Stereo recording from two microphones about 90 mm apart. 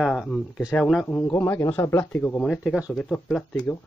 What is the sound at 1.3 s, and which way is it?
Speech, 25° left (ahead or behind).